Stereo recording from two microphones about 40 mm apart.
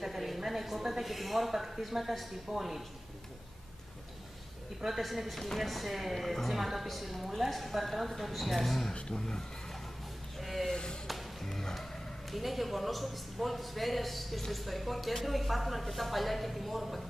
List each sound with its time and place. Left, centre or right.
0.0 s a man's voice: centre
4.8 s a man's voice: centre
8.9 s speech: left
10.3 s a sound: centre
10.7 s a sound: centre
11.1 s music: centre
12.4 s a man's voice: centre